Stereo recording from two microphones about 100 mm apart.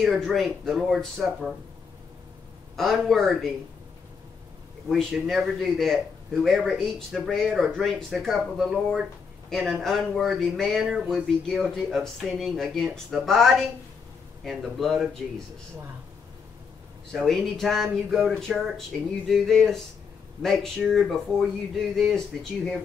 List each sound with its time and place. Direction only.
0.0 s speech: 5° left (ahead or behind)
2.7 s a man's voice: centre (ahead or behind)
5.2 s speech: centre (ahead or behind)
17.1 s speech: 5° left (ahead or behind)